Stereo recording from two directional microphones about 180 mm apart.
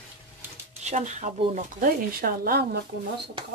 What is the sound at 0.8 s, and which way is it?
Speech, 40° right (ahead or behind).